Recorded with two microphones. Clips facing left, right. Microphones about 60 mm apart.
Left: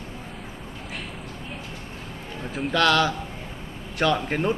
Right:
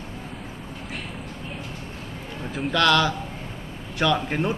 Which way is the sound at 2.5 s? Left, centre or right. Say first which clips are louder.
Even; centre.